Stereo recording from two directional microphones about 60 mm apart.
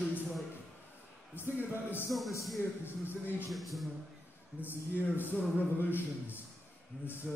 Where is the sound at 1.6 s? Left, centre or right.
Left.